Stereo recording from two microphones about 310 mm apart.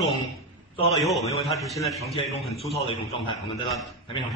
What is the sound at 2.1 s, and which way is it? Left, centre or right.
A man's voice, centre.